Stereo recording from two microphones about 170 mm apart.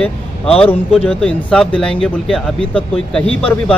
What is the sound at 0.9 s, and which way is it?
Speech, 5° left (ahead or behind).